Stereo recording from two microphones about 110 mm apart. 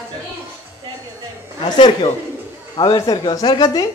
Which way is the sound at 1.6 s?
45° left (ahead or behind).